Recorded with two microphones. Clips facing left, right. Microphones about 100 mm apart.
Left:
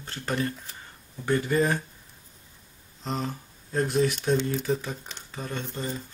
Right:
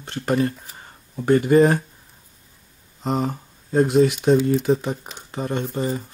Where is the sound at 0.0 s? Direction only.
20° right (ahead or behind).